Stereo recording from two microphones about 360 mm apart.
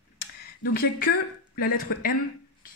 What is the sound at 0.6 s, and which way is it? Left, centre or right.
A woman's voice, left.